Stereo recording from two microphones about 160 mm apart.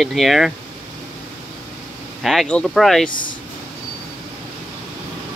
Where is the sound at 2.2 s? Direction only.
5° left (ahead or behind).